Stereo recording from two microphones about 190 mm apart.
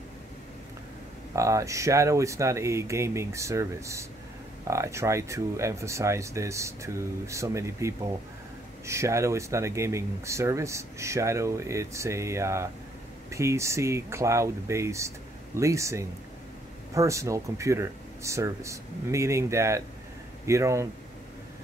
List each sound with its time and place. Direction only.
1.3 s speech: 15° right (ahead or behind)